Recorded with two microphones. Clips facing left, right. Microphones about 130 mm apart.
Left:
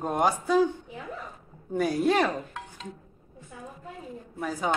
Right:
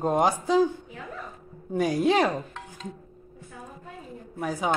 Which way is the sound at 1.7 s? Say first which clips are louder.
Right 1 dB; 10° right (ahead or behind).